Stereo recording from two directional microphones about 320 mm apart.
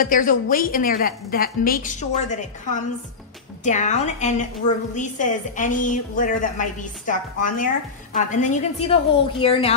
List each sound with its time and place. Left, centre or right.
0.0 s a woman's voice: left